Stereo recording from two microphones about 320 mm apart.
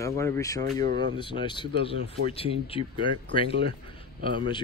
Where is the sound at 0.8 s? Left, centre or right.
Right.